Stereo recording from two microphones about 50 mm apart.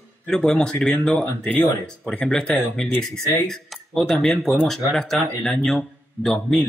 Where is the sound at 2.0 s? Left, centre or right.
Centre.